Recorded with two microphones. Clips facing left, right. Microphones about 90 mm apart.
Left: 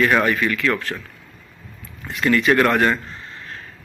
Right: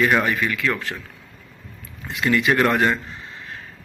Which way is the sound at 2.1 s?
15° right (ahead or behind).